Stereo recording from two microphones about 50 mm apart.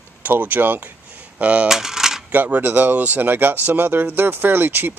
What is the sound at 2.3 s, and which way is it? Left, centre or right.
Speech, right.